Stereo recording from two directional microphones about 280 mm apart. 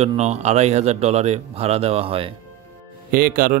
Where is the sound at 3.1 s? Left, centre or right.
Right.